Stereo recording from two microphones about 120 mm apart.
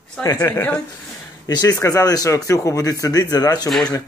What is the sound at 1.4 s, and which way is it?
Speech, 35° left (ahead or behind).